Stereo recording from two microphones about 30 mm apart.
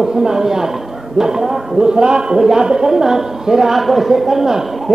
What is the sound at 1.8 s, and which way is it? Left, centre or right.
A man's voice, right.